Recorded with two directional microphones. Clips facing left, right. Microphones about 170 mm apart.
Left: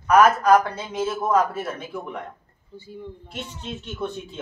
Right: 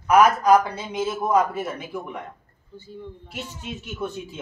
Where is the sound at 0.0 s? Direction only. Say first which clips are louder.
Even; 15° right (ahead or behind).